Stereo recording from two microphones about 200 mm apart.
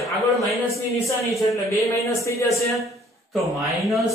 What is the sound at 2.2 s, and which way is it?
Speech, 15° left (ahead or behind).